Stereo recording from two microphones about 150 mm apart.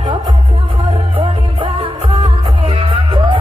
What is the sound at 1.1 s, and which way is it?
Music, 35° right (ahead or behind).